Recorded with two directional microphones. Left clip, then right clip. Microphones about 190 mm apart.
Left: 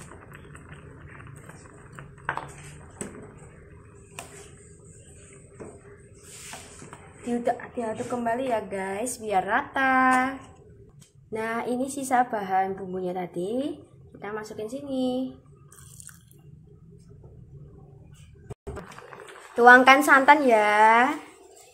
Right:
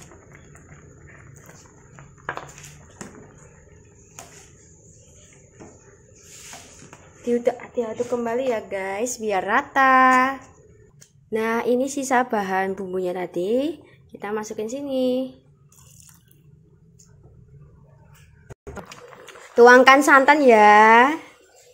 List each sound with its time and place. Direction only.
0.0 s a sound: centre (ahead or behind)
7.2 s a woman's voice: 25° right (ahead or behind)
11.3 s a woman's voice: 30° right (ahead or behind)
19.5 s a woman's voice: 30° right (ahead or behind)